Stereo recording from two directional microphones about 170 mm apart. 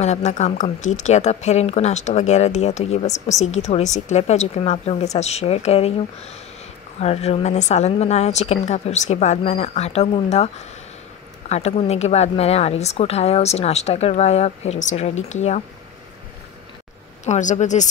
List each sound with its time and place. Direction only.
0.0 s a woman's voice: 40° left (ahead or behind)
7.0 s a woman's voice: 40° left (ahead or behind)
17.2 s speech: 45° left (ahead or behind)